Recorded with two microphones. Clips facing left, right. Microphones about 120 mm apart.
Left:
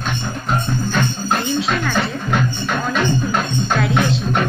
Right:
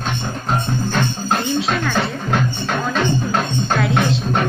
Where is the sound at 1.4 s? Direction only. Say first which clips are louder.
Even; centre (ahead or behind).